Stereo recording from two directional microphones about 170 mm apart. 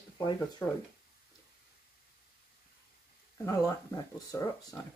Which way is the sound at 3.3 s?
20° left (ahead or behind).